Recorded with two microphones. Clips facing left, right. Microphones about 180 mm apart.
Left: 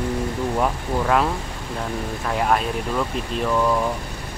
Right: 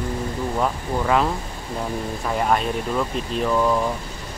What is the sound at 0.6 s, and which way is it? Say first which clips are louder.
Speech: even; centre (ahead or behind).